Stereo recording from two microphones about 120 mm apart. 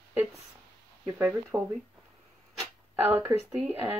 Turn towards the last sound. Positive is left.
turn(degrees=-20)  # may be behind; listen again after turning